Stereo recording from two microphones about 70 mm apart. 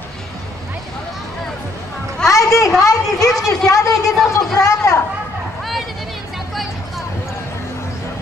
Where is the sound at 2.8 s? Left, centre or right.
Left.